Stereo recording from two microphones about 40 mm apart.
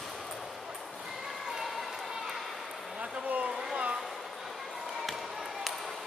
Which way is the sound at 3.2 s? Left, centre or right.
Right.